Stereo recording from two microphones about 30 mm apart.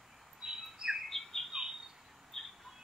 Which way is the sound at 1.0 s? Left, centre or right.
Centre.